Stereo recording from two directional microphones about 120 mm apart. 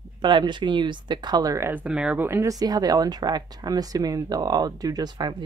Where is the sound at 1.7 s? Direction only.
10° right (ahead or behind).